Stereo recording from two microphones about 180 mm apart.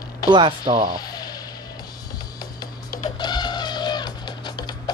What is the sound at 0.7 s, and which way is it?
Speech, 30° right (ahead or behind).